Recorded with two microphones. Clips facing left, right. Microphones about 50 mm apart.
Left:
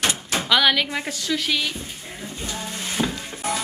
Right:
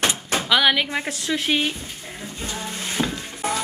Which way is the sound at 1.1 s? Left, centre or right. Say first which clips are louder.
Right 1 dB; right.